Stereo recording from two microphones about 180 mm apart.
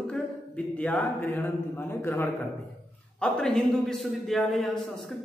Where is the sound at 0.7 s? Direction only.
10° left (ahead or behind).